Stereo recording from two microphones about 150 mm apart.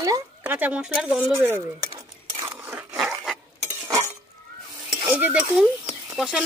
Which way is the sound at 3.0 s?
Centre (ahead or behind).